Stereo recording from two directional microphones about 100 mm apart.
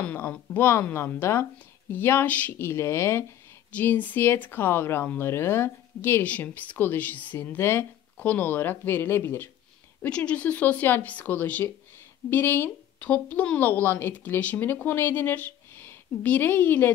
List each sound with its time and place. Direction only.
0.0 s speech: 15° left (ahead or behind)